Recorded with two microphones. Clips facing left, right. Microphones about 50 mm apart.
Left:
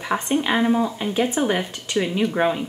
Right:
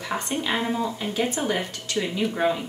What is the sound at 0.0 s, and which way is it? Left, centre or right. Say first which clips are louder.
Speech: left 5 dB; left.